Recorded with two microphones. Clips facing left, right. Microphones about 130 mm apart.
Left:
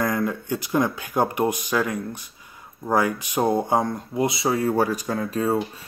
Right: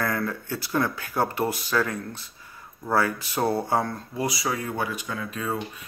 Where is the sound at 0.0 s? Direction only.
15° left (ahead or behind).